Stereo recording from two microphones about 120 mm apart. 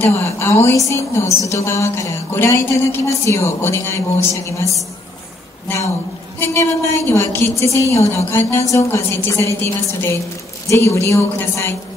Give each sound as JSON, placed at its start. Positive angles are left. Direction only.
{"t": 0.0, "sound": "a woman's voice", "side_deg": 20}
{"t": 6.4, "sound": "a woman's voice", "side_deg": 20}
{"t": 10.7, "sound": "a woman's voice", "side_deg": 25}